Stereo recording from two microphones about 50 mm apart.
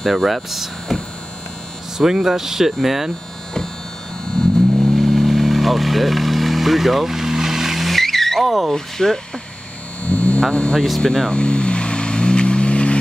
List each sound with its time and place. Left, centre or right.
0.0 s speech: centre
2.0 s speech: centre
4.7 s vehicle: centre
8.7 s speech: centre
10.0 s vehicle: left
10.5 s speech: centre
11.3 s vehicle: left